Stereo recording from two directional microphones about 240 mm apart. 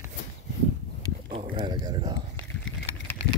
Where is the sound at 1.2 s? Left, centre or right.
Right.